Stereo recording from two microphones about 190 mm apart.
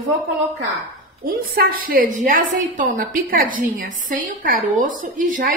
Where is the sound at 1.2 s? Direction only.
50° right (ahead or behind).